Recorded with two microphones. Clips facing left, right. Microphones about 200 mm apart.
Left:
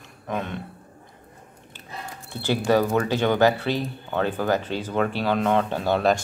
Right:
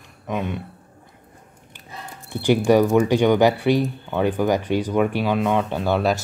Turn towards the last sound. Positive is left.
turn(degrees=-5)  # may be behind; listen again after turning